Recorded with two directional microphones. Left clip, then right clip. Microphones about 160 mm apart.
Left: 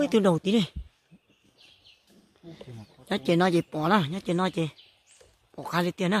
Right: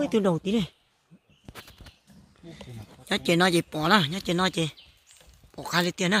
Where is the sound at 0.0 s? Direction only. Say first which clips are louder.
Left 2 dB; 20° left (ahead or behind).